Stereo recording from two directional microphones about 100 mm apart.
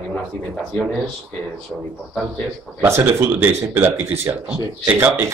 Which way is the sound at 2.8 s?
20° right (ahead or behind).